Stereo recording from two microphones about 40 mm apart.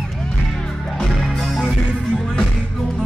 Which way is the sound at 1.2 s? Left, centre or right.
Centre.